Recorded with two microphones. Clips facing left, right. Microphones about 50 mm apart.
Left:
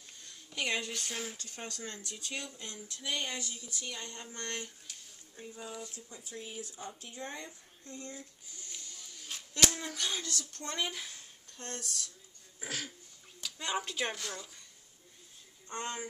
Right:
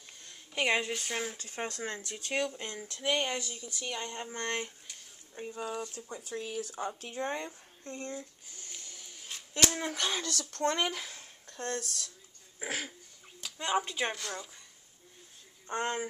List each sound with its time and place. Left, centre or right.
0.6 s a woman's voice: right
5.3 s speech: right
6.8 s speech: right
10.0 s speech: right
12.6 s a woman's voice: right; by 14.5 s centre
15.7 s speech: right